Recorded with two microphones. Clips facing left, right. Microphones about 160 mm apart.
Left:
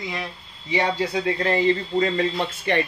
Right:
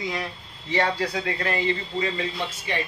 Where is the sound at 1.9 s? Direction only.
50° left (ahead or behind).